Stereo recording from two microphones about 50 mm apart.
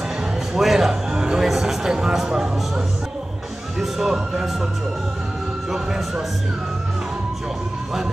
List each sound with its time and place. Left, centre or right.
0.6 s a sound: centre
3.8 s speech: centre
5.7 s speech: centre